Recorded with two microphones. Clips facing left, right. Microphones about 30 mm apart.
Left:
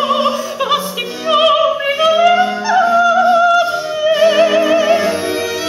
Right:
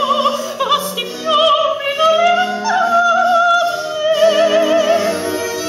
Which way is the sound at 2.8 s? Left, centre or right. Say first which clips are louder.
Left 1 dB; centre.